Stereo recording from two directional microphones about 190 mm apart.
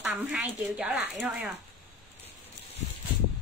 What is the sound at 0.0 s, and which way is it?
Speech, 5° right (ahead or behind).